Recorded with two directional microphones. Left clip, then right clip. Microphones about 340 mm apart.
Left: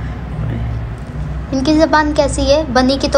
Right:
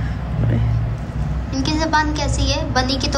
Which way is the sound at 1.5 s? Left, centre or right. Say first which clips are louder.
Left 7 dB; centre.